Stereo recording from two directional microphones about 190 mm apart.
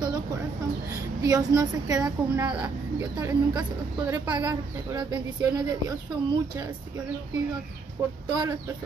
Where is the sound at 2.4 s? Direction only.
5° right (ahead or behind).